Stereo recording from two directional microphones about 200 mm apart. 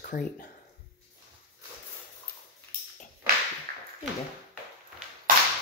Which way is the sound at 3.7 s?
45° right (ahead or behind).